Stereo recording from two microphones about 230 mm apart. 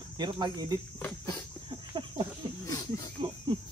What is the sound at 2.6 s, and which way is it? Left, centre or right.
Snake, centre.